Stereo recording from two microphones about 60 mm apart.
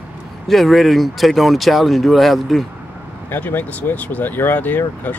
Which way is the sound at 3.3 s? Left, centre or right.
Left.